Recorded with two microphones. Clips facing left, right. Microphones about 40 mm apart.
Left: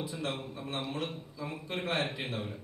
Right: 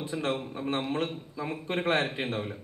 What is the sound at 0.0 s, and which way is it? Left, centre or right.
A man's voice, right.